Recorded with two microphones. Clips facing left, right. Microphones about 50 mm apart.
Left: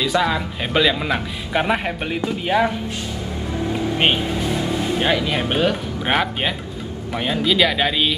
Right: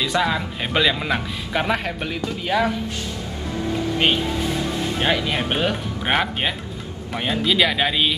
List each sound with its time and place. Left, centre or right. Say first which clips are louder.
0.0 s speech: left 2 dB; centre
3.7 s vehicle: left 1 dB; centre
4.2 s speech: left 1 dB; centre